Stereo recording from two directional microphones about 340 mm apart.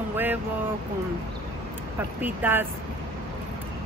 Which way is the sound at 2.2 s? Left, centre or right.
Centre.